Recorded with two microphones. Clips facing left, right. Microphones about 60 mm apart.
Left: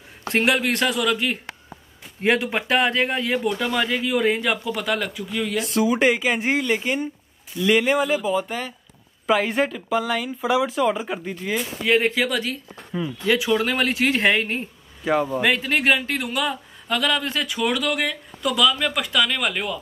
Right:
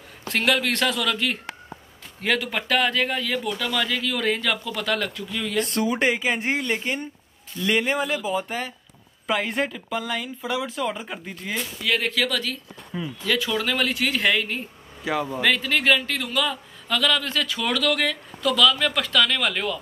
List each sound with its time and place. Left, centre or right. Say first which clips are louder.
0.3 s speech: left 2 dB; left
2.2 s speech: left 4 dB; left; by 11.6 s centre
11.8 s speech: left 4 dB; left
12.9 s speech: left 4 dB; centre
13.4 s speech: left 3 dB; centre
15.1 s speech: left 5 dB; centre
15.4 s speech: left 1 dB; left